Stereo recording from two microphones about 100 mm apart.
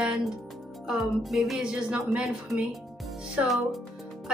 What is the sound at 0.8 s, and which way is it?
Speech, 5° right (ahead or behind).